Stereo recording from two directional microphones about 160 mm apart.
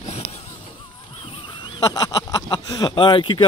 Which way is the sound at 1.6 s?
25° left (ahead or behind).